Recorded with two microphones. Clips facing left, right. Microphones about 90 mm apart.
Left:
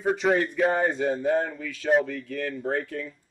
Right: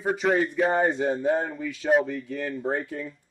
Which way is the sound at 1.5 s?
15° right (ahead or behind).